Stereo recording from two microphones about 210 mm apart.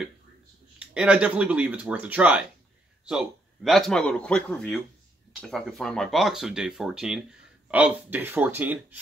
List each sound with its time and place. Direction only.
0.7 s speech: 5° right (ahead or behind)